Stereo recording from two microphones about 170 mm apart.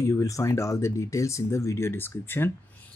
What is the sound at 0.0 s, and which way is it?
Speech, 20° left (ahead or behind).